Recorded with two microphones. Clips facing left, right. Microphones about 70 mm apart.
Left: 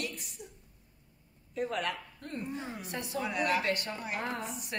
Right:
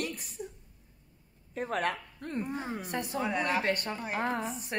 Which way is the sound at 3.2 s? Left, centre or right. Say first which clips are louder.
Even; right.